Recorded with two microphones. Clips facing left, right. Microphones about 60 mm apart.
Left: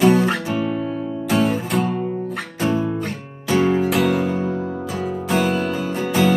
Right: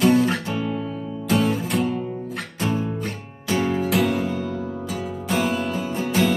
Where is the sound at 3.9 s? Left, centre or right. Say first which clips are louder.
Left 3 dB; centre.